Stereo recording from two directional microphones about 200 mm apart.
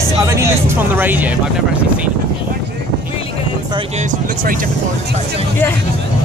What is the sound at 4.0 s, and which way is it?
Speech, 40° right (ahead or behind).